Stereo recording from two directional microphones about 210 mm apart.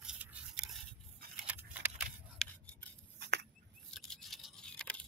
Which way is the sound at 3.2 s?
50° right (ahead or behind).